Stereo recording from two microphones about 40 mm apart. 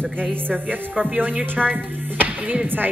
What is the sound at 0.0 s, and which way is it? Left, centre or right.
Speech, right.